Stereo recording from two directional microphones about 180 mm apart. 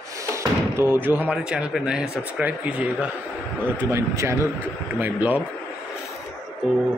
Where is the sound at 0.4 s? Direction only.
10° right (ahead or behind).